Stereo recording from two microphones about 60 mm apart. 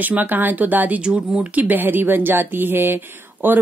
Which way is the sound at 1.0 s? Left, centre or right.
Centre.